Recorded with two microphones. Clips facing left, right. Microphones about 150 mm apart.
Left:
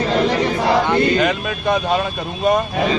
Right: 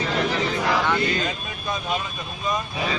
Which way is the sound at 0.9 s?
70° left (ahead or behind).